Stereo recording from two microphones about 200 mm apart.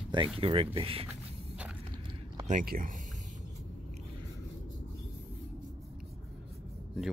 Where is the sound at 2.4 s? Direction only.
45° right (ahead or behind).